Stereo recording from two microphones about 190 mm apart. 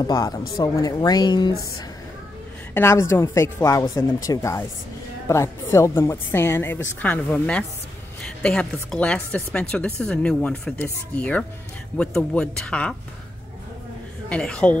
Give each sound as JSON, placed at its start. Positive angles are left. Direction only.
{"t": 0.0, "sound": "speech", "side_deg": 20}
{"t": 2.7, "sound": "a woman's voice", "side_deg": 15}
{"t": 14.3, "sound": "speech", "side_deg": 5}